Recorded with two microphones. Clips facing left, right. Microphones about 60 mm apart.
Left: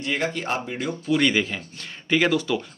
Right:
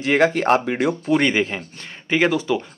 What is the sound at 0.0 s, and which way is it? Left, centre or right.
Speech, right.